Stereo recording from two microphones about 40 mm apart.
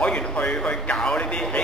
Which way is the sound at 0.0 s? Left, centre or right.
Left.